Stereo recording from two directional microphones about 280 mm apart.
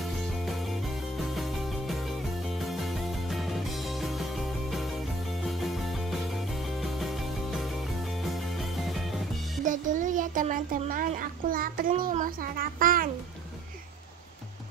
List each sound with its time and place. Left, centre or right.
0.5 s music: centre
9.7 s a child's voice: right